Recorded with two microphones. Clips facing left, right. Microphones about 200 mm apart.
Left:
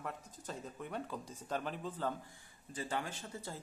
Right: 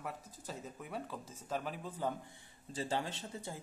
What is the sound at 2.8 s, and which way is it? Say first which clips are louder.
Speech: right 2 dB; 30° right (ahead or behind).